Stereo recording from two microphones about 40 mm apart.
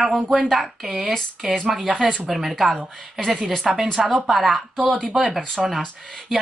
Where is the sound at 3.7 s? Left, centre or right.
Centre.